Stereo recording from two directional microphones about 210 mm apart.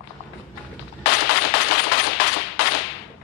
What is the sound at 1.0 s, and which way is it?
Machine gun, 50° left (ahead or behind).